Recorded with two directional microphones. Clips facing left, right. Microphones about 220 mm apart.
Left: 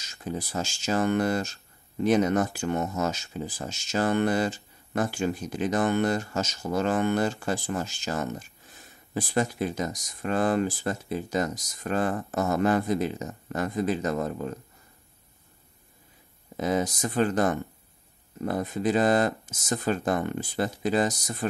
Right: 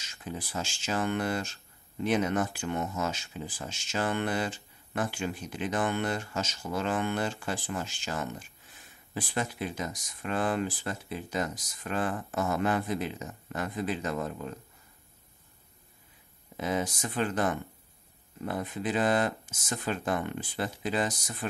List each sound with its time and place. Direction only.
0.0 s speech: 40° left (ahead or behind)
16.5 s speech: 40° left (ahead or behind)